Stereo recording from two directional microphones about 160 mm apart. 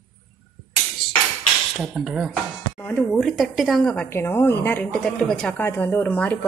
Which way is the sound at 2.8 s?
15° left (ahead or behind).